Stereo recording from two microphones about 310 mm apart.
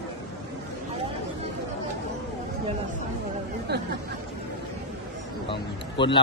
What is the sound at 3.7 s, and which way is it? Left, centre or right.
Chatter, right.